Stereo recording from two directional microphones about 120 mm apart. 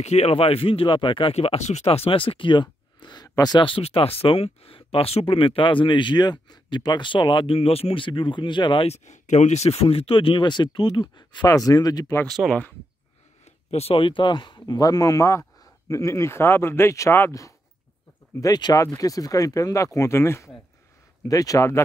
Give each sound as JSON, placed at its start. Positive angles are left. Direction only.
{"t": 0.0, "sound": "speech", "side_deg": 65}
{"t": 8.8, "sound": "speech", "side_deg": 70}
{"t": 12.3, "sound": "speech", "side_deg": 0}
{"t": 13.7, "sound": "speech", "side_deg": 55}